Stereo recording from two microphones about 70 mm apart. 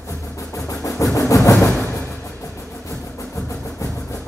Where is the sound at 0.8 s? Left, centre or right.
Left.